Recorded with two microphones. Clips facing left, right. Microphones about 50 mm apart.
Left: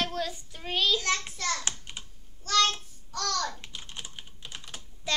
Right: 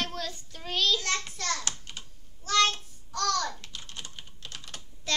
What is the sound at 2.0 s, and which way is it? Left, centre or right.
Babbling, centre.